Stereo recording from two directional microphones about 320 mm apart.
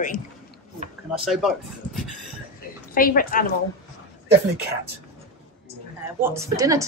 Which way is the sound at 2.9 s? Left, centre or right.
Left.